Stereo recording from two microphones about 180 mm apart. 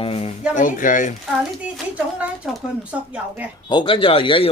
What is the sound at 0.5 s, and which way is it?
Speech, 45° left (ahead or behind).